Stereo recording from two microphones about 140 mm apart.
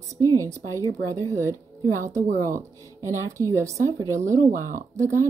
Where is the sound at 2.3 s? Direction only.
70° right (ahead or behind).